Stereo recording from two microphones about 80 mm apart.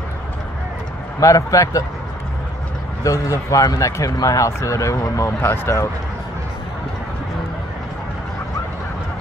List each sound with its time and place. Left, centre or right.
1.2 s speech: left
3.0 s speech: left